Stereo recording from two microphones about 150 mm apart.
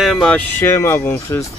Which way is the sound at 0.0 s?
Centre (ahead or behind).